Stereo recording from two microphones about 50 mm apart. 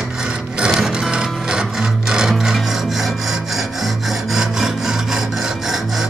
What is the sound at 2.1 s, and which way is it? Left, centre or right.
Filing, centre.